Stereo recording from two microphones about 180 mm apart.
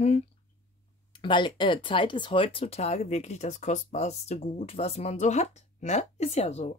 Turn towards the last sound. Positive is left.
turn(degrees=35)  # may be behind; listen again after turning